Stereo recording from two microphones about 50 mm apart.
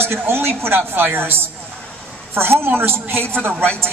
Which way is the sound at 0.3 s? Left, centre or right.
Right.